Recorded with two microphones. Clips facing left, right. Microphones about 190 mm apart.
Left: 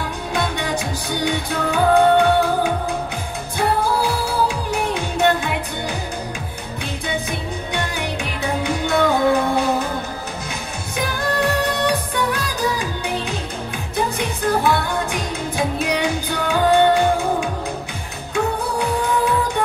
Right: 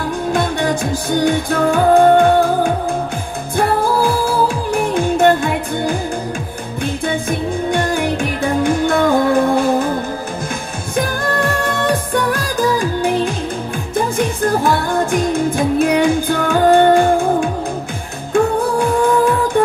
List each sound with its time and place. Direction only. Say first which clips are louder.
0.3 s music: right 5 dB; 45° right (ahead or behind)
4.6 s music: right 6 dB; 50° right (ahead or behind)
11.0 s music: right 4 dB; 50° right (ahead or behind)